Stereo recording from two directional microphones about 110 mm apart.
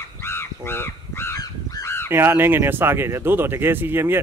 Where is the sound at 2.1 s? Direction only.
20° right (ahead or behind).